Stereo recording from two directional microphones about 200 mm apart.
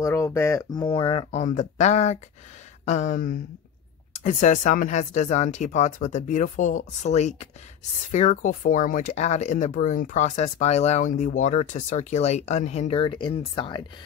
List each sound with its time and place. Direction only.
0.0 s speech: 15° left (ahead or behind)